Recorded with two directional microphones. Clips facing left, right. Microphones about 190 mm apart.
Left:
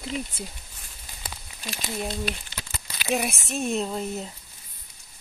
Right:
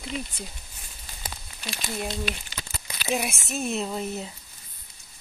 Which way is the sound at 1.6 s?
Centre (ahead or behind).